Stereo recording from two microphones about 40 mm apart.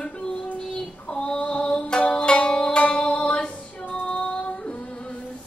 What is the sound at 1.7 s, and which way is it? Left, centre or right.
Music, left.